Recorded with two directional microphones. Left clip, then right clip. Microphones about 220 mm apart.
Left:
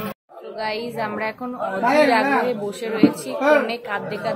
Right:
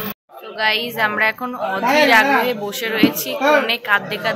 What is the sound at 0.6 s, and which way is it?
A woman's voice, 5° left (ahead or behind).